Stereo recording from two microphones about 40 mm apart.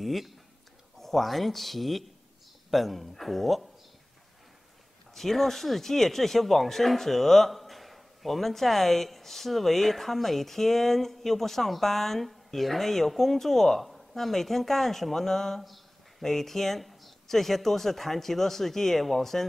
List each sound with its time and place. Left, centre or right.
0.0 s a sound: centre
0.9 s speech: centre
5.1 s speech: centre